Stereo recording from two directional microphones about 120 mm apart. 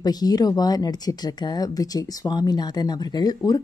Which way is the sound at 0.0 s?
35° left (ahead or behind).